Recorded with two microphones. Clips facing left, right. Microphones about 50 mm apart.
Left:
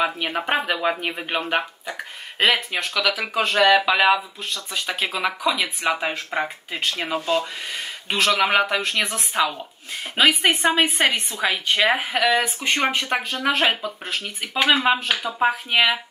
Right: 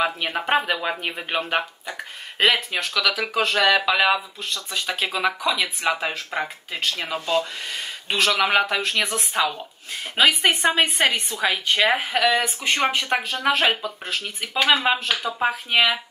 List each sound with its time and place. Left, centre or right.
0.0 s speech: centre
13.8 s speech: centre